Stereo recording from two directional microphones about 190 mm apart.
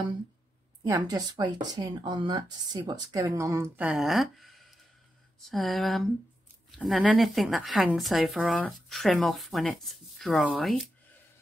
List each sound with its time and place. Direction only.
0.8 s speech: 20° right (ahead or behind); by 10.9 s centre (ahead or behind)